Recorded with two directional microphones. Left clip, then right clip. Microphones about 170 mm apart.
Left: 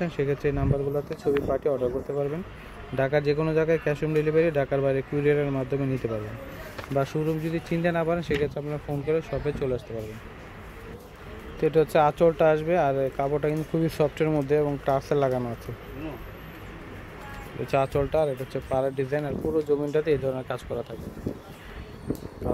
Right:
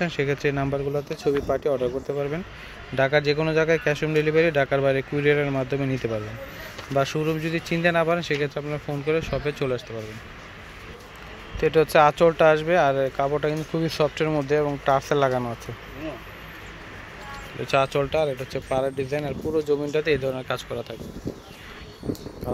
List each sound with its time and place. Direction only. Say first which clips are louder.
0.0 s speech: right 2 dB; centre (ahead or behind)
1.7 s speech: right 2 dB; 10° right (ahead or behind)
3.0 s speech: right 3 dB; 5° left (ahead or behind)
7.0 s speech: right 3 dB; centre (ahead or behind)
11.6 s speech: right 3 dB; centre (ahead or behind)
17.6 s speech: right 3 dB; 5° left (ahead or behind)